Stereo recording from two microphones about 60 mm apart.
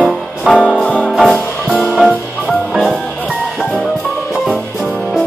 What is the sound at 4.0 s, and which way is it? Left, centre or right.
Music, left.